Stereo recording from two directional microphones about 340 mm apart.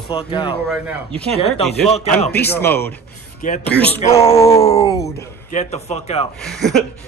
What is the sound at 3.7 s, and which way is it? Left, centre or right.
Speech, centre.